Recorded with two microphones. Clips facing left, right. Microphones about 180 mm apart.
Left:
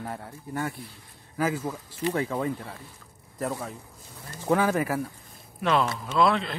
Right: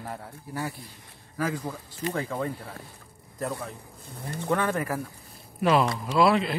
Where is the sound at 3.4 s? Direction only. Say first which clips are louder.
Left 1 dB; centre (ahead or behind).